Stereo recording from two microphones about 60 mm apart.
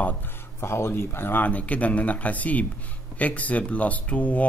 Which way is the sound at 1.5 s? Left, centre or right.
Left.